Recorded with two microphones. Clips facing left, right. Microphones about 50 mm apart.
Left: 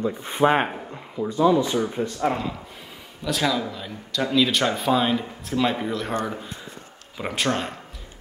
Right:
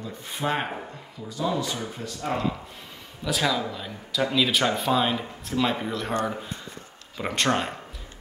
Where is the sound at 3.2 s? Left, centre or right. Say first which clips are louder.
Left 2 dB; centre.